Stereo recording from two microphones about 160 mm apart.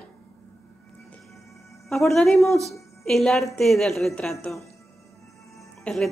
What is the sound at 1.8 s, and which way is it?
A woman's voice, centre (ahead or behind).